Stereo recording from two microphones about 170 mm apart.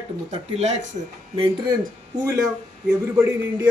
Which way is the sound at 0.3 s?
40° right (ahead or behind).